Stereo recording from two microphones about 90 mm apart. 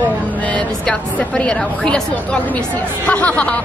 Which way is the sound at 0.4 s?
15° left (ahead or behind).